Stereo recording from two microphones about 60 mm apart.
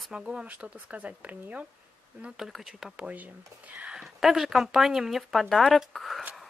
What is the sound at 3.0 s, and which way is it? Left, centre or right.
Speech, right.